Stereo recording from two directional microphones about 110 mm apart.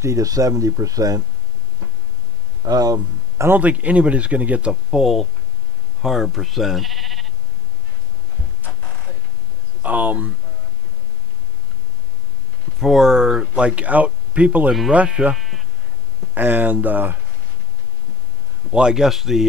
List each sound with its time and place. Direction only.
0.0 s speech: 30° right (ahead or behind)
2.6 s speech: 35° right (ahead or behind)
3.4 s speech: 15° right (ahead or behind)
9.8 s speech: 15° right (ahead or behind)
12.8 s speech: 5° right (ahead or behind)
14.7 s speech: 5° right (ahead or behind)
16.3 s speech: 15° right (ahead or behind)
18.7 s speech: 10° right (ahead or behind)